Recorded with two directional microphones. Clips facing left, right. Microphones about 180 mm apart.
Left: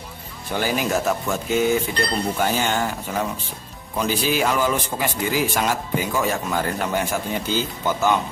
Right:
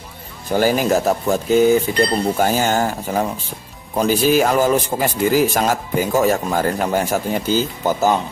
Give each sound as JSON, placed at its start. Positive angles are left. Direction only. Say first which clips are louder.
{"t": 0.5, "sound": "a man's voice", "louder": "right 7 dB", "side_deg": -40}